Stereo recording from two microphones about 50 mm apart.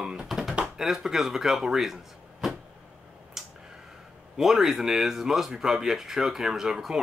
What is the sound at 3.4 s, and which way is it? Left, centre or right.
Tick-tock, centre.